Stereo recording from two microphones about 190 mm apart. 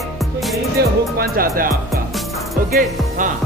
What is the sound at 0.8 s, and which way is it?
Speech, 55° right (ahead or behind).